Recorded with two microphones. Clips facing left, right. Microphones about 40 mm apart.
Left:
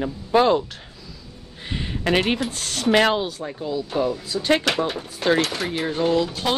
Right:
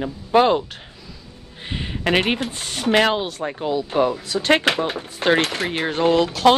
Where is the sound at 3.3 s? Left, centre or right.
Right.